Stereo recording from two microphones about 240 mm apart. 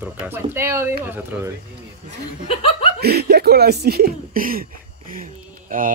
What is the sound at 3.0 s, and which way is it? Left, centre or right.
Speech, right.